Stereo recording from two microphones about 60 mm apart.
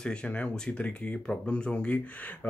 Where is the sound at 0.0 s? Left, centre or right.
Centre.